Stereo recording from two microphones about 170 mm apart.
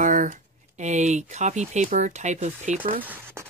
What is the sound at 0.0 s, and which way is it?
Speech, 50° right (ahead or behind).